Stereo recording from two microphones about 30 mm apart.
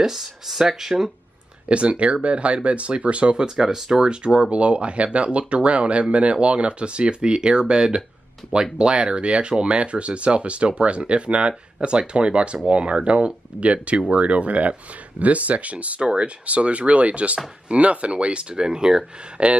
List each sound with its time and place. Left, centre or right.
0.0 s speech: centre
1.7 s speech: right
3.3 s speech: centre
4.0 s speech: right
16.0 s speech: right
16.4 s speech: right
18.5 s speech: right
19.4 s speech: right